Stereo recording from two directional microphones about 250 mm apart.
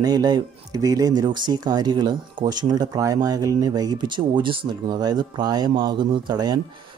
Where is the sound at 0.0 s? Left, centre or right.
Centre.